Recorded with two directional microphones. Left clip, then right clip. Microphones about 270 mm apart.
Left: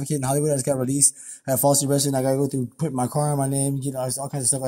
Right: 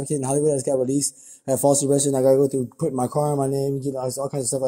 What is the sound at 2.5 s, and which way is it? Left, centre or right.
Speech, left.